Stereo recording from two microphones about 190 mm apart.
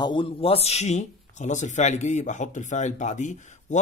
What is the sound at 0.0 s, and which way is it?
Speech, 25° left (ahead or behind).